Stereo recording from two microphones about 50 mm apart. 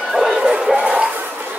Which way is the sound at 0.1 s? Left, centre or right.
Centre.